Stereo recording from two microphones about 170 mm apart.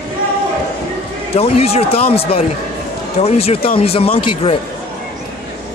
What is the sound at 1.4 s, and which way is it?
Speech, 35° left (ahead or behind).